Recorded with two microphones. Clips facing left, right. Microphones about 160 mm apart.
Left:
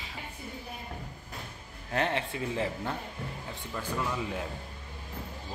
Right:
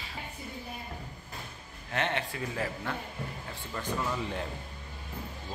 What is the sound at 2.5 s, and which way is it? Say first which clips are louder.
Speech: left 3 dB; 25° left (ahead or behind).